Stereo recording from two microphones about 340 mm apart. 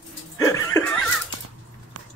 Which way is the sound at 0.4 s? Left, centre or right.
Centre.